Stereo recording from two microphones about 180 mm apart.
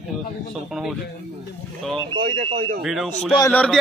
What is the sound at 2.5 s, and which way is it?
Speech, 60° right (ahead or behind).